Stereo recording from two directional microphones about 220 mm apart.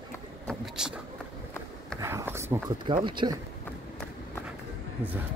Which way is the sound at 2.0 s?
10° right (ahead or behind).